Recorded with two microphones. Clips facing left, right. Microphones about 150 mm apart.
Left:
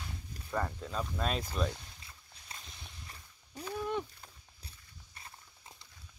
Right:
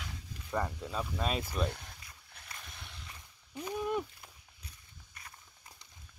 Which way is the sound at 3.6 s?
15° right (ahead or behind).